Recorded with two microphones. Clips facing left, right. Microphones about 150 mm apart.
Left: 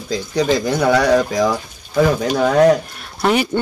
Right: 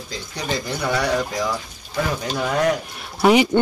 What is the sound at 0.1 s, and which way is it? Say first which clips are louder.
Speech: left 10 dB; 90° left.